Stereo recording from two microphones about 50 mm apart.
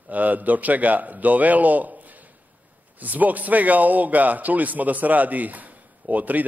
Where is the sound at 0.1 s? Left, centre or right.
Right.